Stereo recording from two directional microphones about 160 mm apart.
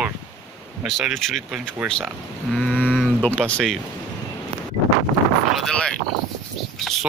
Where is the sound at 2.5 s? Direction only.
5° left (ahead or behind).